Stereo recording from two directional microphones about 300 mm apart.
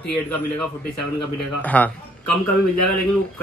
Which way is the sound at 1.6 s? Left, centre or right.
Centre.